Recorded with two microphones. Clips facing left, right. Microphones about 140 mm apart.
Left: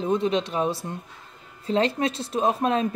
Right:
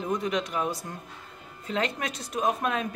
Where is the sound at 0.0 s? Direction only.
25° left (ahead or behind).